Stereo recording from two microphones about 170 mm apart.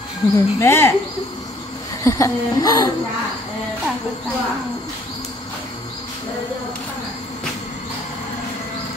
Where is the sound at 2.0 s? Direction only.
20° left (ahead or behind).